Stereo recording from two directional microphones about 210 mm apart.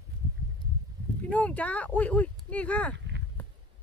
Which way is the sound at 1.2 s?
5° left (ahead or behind).